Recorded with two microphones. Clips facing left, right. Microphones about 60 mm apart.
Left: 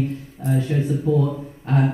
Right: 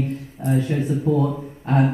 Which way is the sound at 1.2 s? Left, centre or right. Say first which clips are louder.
Right 1 dB; centre.